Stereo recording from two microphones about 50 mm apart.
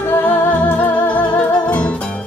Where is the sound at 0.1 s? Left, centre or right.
Left.